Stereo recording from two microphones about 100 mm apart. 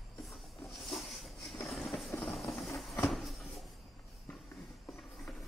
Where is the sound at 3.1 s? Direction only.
Centre (ahead or behind).